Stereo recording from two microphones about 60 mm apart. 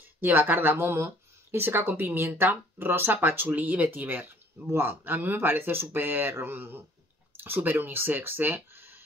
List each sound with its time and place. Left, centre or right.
0.2 s speech: right